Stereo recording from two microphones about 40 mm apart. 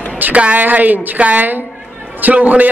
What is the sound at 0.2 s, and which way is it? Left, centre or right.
A woman's voice, right.